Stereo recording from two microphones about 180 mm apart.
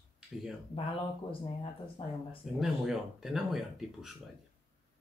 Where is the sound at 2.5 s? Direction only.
Centre (ahead or behind).